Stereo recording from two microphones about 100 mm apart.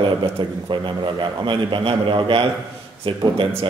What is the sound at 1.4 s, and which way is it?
Speech, 55° right (ahead or behind).